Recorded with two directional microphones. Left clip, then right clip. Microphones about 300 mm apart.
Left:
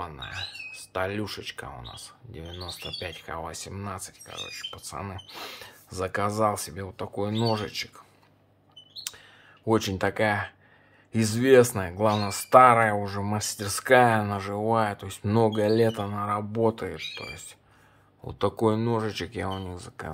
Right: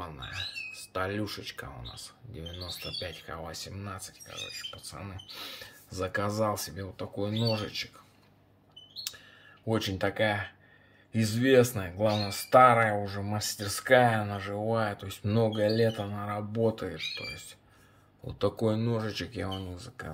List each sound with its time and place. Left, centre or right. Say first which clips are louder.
0.0 s speech: left 3 dB; centre
9.7 s speech: left 5 dB; centre